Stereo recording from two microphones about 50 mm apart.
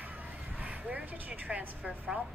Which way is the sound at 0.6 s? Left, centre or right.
Right.